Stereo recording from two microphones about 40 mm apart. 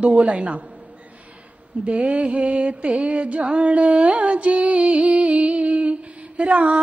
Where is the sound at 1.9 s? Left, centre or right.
Right.